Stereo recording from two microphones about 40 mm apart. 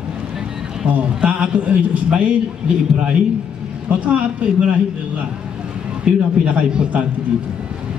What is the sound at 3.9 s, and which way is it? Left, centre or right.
Speech, right.